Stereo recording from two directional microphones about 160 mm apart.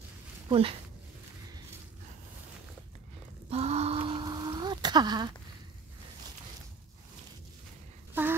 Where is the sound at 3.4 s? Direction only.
40° right (ahead or behind).